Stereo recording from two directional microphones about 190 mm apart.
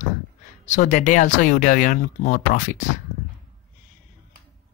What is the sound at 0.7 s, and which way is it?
Speech, 40° left (ahead or behind).